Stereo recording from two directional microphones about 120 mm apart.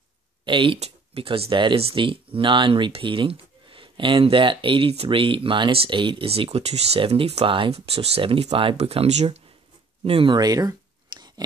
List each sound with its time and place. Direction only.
0.5 s speech: 45° right (ahead or behind)
0.7 s speech: 55° right (ahead or behind)
10.3 s a sound: 30° right (ahead or behind)